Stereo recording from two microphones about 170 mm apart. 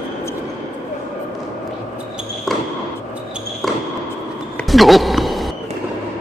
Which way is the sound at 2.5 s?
Centre (ahead or behind).